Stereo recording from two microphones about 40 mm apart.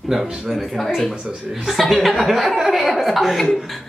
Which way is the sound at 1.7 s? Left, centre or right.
Centre.